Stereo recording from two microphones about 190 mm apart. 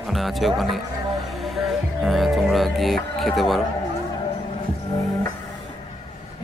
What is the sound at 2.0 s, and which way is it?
Music, centre (ahead or behind).